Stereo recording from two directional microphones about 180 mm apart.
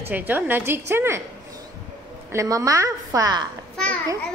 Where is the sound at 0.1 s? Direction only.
10° right (ahead or behind).